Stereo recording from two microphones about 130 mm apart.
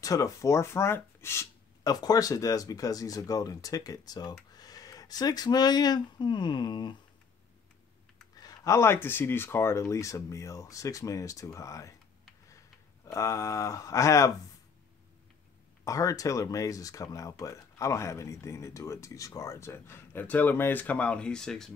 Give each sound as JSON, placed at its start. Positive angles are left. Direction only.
{"t": 0.0, "sound": "speech", "side_deg": 25}
{"t": 8.4, "sound": "speech", "side_deg": 25}
{"t": 13.0, "sound": "speech", "side_deg": 25}
{"t": 15.8, "sound": "speech", "side_deg": 25}